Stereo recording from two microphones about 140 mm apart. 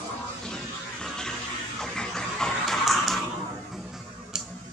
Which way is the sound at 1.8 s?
5° left (ahead or behind).